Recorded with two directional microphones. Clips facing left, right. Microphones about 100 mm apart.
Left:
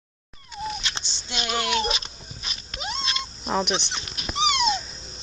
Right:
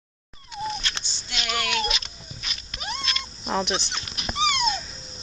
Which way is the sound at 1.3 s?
30° left (ahead or behind).